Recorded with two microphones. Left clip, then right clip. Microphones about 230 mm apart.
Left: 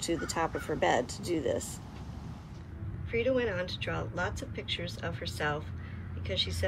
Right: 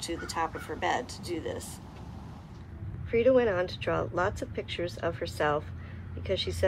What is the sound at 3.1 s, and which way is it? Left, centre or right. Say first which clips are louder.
Speech: right 6 dB; centre.